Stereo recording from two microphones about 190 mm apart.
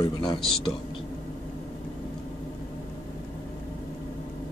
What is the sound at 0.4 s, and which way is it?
Speech, centre (ahead or behind).